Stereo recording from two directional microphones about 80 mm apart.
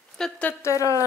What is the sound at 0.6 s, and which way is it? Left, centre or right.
Speech, left.